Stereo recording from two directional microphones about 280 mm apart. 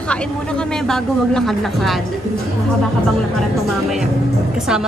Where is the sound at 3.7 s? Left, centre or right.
Centre.